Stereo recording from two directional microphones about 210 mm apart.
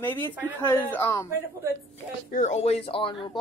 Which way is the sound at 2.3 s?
35° left (ahead or behind).